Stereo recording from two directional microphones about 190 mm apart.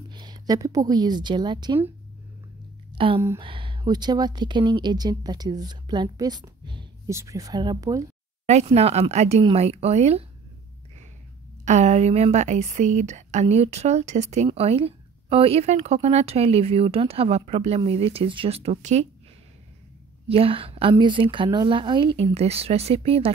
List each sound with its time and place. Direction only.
0.1 s a woman's voice: 20° right (ahead or behind)
3.0 s a woman's voice: 25° right (ahead or behind)
8.5 s a woman's voice: 35° right (ahead or behind)
11.6 s a woman's voice: 35° right (ahead or behind)
20.2 s a woman's voice: 30° right (ahead or behind)